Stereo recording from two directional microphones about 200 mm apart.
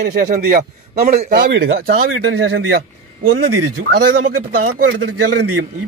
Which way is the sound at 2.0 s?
90° right.